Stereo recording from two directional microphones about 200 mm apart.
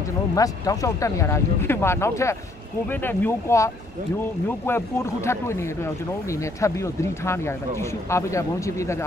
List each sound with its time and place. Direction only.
0.4 s speech: 15° left (ahead or behind)